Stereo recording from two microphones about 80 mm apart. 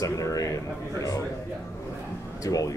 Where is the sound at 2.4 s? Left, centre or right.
Left.